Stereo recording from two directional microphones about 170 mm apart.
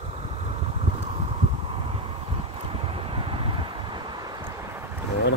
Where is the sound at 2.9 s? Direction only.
35° right (ahead or behind).